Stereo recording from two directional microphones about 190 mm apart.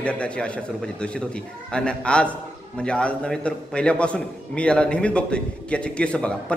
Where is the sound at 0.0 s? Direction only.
5° left (ahead or behind).